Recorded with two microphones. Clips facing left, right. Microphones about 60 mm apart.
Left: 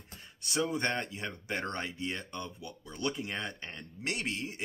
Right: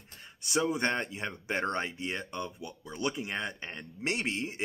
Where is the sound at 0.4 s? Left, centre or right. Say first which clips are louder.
Right 3 dB; right.